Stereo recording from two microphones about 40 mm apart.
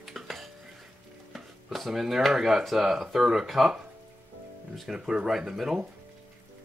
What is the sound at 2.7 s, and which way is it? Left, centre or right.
Speech, centre.